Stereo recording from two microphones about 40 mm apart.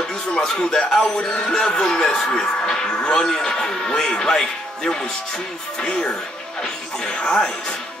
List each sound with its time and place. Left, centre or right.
0.3 s a man's voice: centre
6.6 s music: centre
7.2 s speech: centre